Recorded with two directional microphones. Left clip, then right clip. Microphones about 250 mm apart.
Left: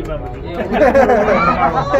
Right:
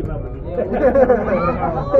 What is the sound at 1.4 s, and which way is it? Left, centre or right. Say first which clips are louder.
Speech: left 6 dB; left.